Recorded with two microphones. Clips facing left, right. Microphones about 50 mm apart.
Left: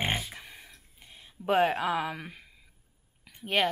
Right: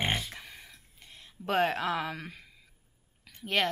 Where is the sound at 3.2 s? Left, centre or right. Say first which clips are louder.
Left 1 dB; centre.